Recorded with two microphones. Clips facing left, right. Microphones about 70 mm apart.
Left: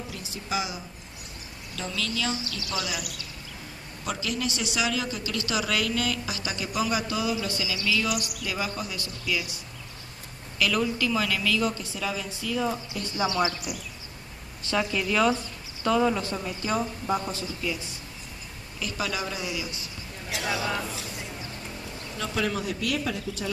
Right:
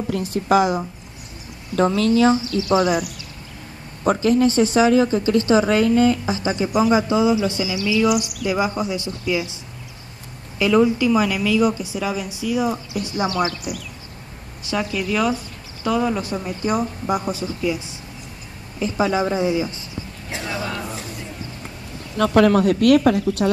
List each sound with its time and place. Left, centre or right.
0.1 s speech: right
10.6 s a woman's voice: right
13.5 s speech: left
14.6 s a woman's voice: centre
16.2 s a woman's voice: centre
22.1 s speech: right